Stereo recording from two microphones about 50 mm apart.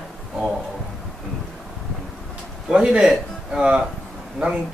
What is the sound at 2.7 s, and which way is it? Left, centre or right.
A man's voice, centre.